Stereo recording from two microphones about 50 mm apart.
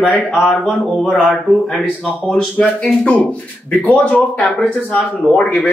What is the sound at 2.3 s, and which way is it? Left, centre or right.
Speech, centre.